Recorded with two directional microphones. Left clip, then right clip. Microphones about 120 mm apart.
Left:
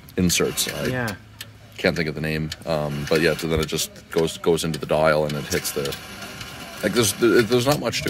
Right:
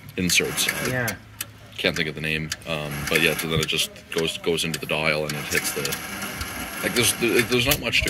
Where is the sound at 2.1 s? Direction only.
50° left (ahead or behind).